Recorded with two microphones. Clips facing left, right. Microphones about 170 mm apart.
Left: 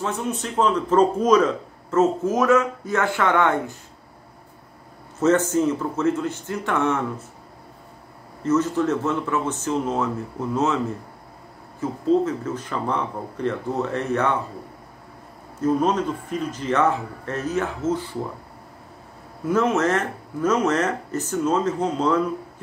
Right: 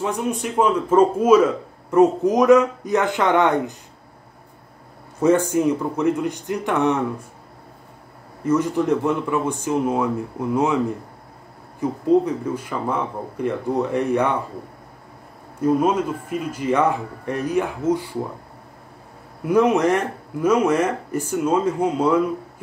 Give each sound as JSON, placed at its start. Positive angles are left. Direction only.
{"t": 0.0, "sound": "a man's voice", "side_deg": -15}
{"t": 5.2, "sound": "a man's voice", "side_deg": -15}
{"t": 8.5, "sound": "a man's voice", "side_deg": -15}
{"t": 11.8, "sound": "a man's voice", "side_deg": -15}
{"t": 15.6, "sound": "a man's voice", "side_deg": -10}
{"t": 19.4, "sound": "a man's voice", "side_deg": -15}